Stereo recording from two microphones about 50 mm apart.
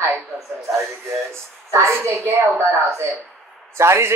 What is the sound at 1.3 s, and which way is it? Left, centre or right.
Speech, right.